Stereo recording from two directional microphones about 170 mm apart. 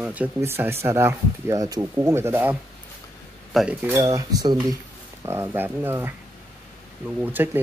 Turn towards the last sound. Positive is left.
turn(degrees=-10)  # may be behind; listen again after turning